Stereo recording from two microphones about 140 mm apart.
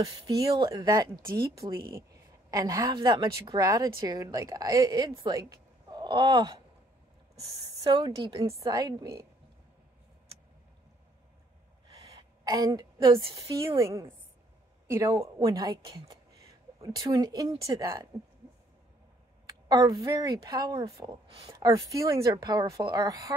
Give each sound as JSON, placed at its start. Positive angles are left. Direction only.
{"t": 0.0, "sound": "a woman's voice", "side_deg": -25}
{"t": 12.2, "sound": "a woman's voice", "side_deg": -25}
{"t": 19.4, "sound": "a woman's voice", "side_deg": -25}